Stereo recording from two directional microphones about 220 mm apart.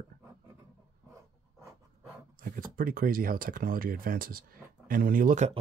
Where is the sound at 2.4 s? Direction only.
40° right (ahead or behind).